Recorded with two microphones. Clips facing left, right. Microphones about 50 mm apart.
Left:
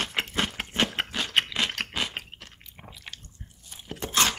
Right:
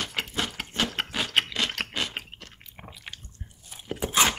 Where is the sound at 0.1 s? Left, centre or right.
Left.